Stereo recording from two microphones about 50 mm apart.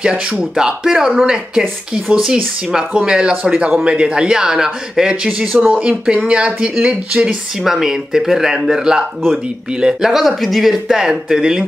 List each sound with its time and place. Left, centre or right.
0.4 s speech: centre
0.8 s speech: centre
3.1 s speech: centre
7.6 s speech: centre
10.2 s speech: centre